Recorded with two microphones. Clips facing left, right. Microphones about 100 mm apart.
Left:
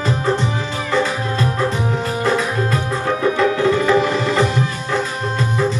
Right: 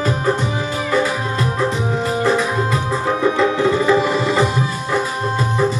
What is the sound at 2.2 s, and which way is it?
Music, 15° right (ahead or behind).